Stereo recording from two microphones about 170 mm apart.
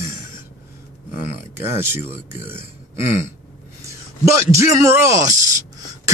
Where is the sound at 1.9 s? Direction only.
15° right (ahead or behind).